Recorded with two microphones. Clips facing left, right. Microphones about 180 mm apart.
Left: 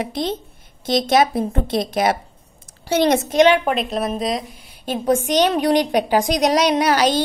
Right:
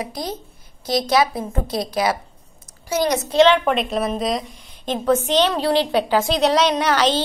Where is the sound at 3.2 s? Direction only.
15° left (ahead or behind).